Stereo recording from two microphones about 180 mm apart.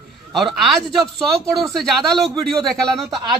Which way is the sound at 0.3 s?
Centre (ahead or behind).